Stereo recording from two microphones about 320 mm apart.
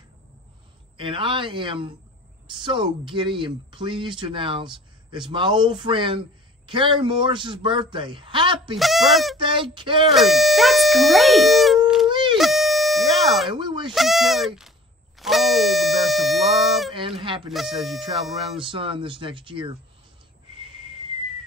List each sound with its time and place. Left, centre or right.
0.9 s speech: centre
8.7 s speech: centre
9.4 s speech: centre
10.1 s speech: centre
12.1 s a sound: centre
12.4 s a sound: centre
13.5 s speech: centre
13.9 s speech: centre
15.1 s a sound: centre
16.9 s speech: centre
17.5 s speech: centre
18.6 s speech: centre